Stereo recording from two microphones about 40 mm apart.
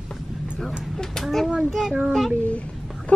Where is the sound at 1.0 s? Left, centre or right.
Centre.